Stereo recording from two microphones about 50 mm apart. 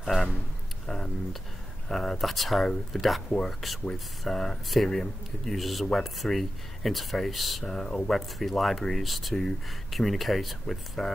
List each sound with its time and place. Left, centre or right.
0.0 s speech: centre
3.3 s speech: centre
7.7 s speech: centre